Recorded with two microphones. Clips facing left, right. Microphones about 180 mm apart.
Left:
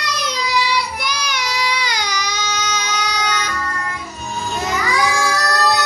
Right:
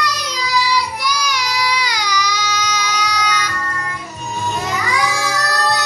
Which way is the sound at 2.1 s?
50° left (ahead or behind).